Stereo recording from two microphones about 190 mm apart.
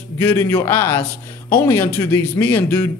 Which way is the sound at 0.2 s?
15° left (ahead or behind).